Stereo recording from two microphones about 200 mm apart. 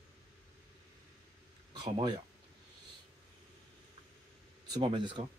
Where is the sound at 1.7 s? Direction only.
20° right (ahead or behind).